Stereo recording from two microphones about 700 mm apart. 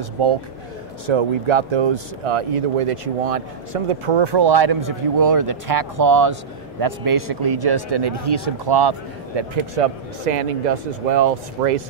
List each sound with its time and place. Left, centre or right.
1.0 s speech: right
10.3 s speech: right